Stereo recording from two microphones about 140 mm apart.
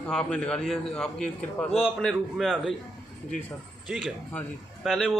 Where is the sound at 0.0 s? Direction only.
5° left (ahead or behind).